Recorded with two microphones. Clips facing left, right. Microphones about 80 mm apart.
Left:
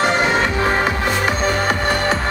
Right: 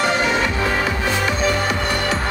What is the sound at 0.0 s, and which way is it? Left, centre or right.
Music, left.